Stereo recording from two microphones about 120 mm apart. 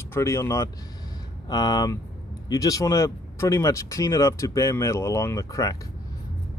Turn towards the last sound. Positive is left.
turn(degrees=30)  # may be behind; listen again after turning